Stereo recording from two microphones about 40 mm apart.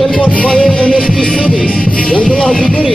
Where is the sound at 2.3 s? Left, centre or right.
Centre.